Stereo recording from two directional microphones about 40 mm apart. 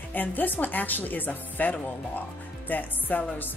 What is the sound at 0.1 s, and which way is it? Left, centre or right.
Speech, left.